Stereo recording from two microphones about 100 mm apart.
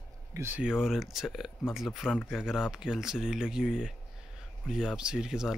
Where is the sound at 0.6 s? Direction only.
5° right (ahead or behind).